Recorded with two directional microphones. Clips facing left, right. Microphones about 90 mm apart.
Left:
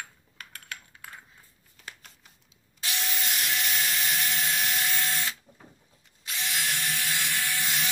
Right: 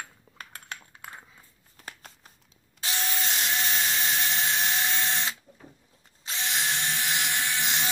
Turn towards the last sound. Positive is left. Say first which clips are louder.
# right 1 dB
turn(degrees=-25)  # may be behind; listen again after turning